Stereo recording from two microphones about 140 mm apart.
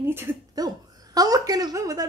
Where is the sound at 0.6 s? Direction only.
25° right (ahead or behind).